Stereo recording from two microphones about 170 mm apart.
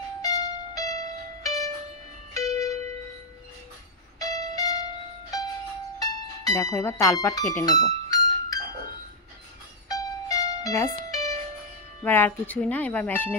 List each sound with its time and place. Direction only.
0.2 s music: 20° left (ahead or behind)
4.2 s music: 20° left (ahead or behind)
5.9 s music: 20° left (ahead or behind)
9.8 s music: 20° left (ahead or behind)
12.0 s speech: 10° left (ahead or behind)